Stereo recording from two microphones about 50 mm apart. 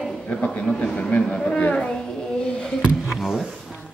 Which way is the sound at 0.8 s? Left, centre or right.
Left.